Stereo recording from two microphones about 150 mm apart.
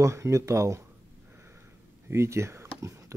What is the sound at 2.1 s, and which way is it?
Speech, 20° right (ahead or behind).